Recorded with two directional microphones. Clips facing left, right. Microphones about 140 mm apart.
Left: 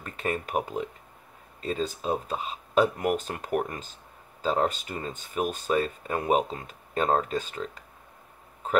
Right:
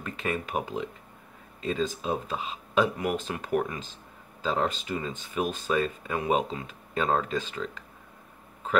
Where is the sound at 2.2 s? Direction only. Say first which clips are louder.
Left 1 dB; 45° left (ahead or behind).